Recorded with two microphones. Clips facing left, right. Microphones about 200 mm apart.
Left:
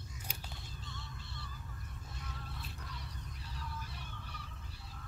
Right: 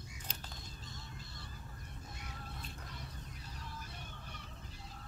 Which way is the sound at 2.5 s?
45° right (ahead or behind).